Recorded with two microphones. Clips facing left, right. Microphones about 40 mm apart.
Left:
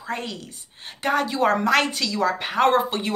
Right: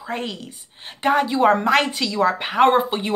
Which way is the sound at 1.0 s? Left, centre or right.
Centre.